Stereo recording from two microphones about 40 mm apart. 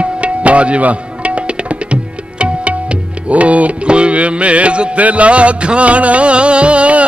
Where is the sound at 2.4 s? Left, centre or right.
Right.